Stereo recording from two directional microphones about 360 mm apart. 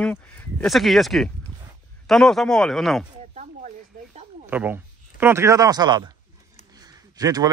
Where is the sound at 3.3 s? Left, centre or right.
Right.